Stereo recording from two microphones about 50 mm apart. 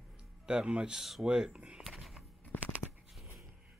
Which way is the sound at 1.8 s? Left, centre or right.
Centre.